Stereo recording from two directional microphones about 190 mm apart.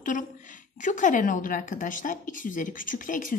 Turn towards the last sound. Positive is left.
turn(degrees=45)  # may be behind; listen again after turning